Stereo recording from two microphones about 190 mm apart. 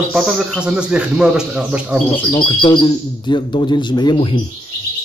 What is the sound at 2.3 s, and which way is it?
A man's voice, 25° left (ahead or behind).